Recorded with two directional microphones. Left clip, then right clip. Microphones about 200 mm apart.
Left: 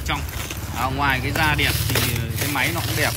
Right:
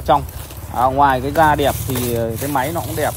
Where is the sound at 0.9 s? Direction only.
5° left (ahead or behind).